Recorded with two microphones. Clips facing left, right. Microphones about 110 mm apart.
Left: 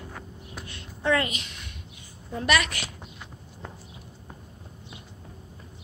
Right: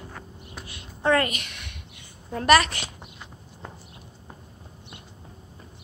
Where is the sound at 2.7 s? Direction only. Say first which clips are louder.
Even; 25° right (ahead or behind).